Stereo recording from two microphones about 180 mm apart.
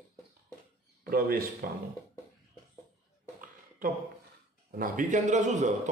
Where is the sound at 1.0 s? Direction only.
55° right (ahead or behind).